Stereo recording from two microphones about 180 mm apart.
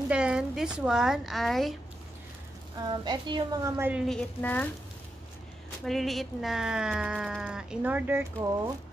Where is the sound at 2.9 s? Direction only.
25° right (ahead or behind).